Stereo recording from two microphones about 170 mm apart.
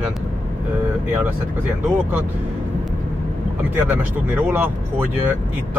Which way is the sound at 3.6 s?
10° right (ahead or behind).